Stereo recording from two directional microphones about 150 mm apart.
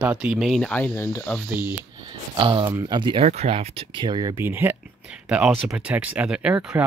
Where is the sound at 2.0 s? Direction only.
35° right (ahead or behind).